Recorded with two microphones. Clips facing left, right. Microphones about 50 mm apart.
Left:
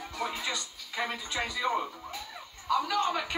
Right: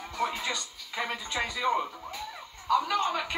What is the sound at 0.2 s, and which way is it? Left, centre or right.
Music, right.